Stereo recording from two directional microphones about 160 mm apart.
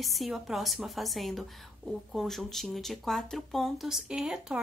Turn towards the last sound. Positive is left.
turn(degrees=-5)  # may be behind; listen again after turning